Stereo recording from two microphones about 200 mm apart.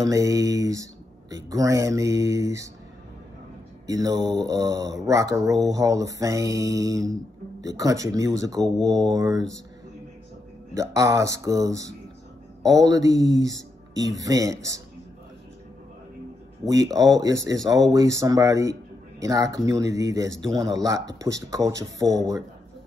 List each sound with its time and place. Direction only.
0.0 s speech: 15° right (ahead or behind)
3.8 s speech: 15° right (ahead or behind)
10.7 s speech: 15° right (ahead or behind)
16.6 s speech: 15° right (ahead or behind)